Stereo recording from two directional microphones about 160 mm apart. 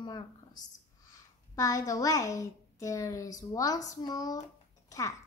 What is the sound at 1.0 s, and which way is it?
A woman's voice, 20° left (ahead or behind).